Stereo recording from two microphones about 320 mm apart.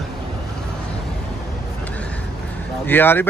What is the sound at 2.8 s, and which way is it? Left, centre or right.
Speech, centre.